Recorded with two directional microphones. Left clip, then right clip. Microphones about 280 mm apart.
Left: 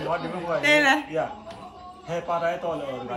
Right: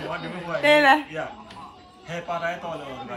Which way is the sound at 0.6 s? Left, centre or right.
Centre.